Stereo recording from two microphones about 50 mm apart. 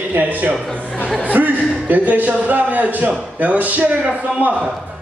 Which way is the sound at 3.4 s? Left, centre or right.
Right.